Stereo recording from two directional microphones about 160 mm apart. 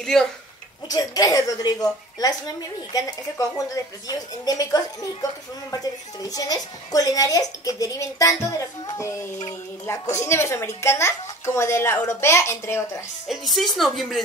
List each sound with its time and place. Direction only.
0.1 s speech: centre (ahead or behind)
0.8 s a woman's voice: 25° left (ahead or behind)
13.3 s speech: centre (ahead or behind)